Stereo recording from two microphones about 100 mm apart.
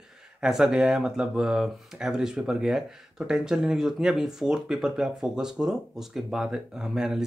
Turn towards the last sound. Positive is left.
turn(degrees=-5)  # may be behind; listen again after turning